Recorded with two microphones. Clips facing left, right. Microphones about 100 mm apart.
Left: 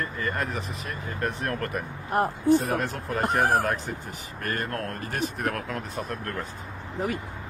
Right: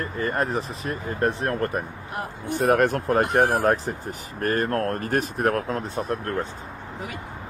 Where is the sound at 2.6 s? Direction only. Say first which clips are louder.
Right 9 dB; 60° right (ahead or behind).